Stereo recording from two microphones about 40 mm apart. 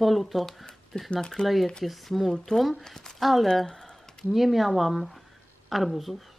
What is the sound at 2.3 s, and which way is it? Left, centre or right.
Speech, centre.